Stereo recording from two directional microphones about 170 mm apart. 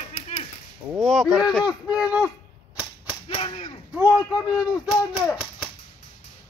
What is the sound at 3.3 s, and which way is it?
Whip, 35° left (ahead or behind).